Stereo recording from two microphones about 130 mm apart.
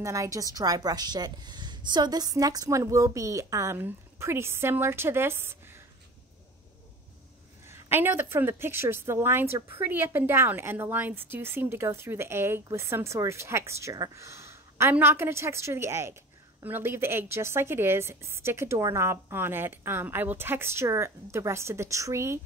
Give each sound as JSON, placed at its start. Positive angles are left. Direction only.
{"t": 0.0, "sound": "a woman's voice", "side_deg": -25}
{"t": 7.6, "sound": "a woman's voice", "side_deg": -20}